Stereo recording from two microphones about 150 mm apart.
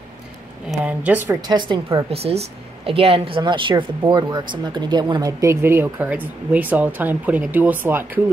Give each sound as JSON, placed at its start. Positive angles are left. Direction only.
{"t": 0.8, "sound": "speech", "side_deg": -10}
{"t": 1.5, "sound": "a woman's voice", "side_deg": -30}